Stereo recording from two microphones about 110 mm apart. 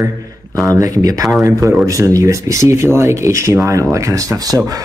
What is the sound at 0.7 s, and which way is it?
Speech, 30° right (ahead or behind).